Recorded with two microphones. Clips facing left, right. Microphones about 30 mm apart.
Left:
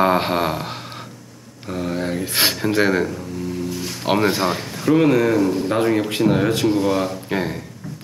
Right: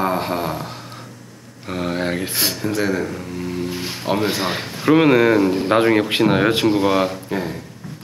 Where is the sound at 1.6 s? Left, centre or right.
Right.